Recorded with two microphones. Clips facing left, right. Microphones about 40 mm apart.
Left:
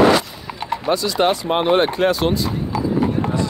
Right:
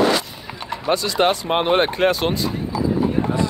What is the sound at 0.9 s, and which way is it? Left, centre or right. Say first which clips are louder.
Speech: even; right.